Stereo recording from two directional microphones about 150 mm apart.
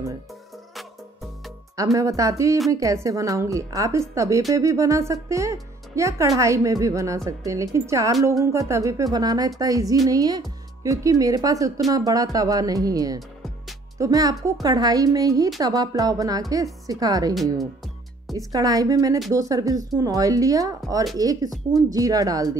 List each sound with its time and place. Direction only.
1.8 s a woman's voice: 20° right (ahead or behind)
18.5 s a woman's voice: 25° right (ahead or behind)
21.5 s speech: centre (ahead or behind)
21.9 s a woman's voice: 25° right (ahead or behind)